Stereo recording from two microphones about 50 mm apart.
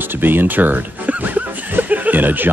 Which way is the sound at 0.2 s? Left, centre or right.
Right.